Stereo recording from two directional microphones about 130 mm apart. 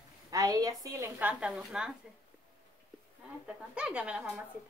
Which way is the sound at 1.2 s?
5° right (ahead or behind).